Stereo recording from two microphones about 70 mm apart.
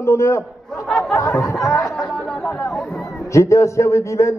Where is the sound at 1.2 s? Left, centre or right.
Left.